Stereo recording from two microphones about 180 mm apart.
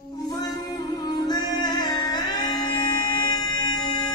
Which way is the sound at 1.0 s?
20° left (ahead or behind).